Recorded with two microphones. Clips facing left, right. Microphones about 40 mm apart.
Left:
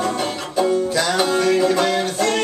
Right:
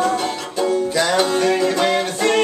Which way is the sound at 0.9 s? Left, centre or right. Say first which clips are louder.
Right 1 dB; centre.